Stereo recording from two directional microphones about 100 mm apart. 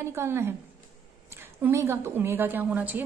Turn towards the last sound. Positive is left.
turn(degrees=-15)  # may be behind; listen again after turning